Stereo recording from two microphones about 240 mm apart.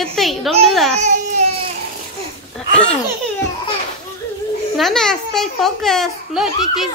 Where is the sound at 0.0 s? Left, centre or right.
Centre.